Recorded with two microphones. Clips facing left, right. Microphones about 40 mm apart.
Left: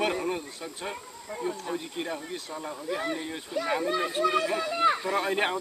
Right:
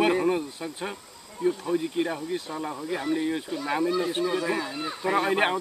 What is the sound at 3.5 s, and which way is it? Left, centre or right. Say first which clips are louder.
Speech: left 1 dB; right.